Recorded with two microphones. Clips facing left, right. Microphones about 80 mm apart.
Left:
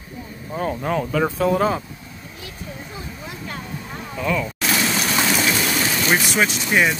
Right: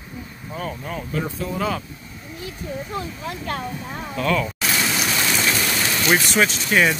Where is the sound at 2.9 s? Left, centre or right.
Right.